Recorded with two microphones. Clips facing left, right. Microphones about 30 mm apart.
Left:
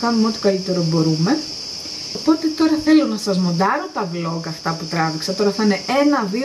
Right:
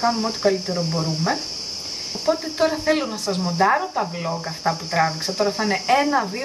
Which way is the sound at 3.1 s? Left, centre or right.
Centre.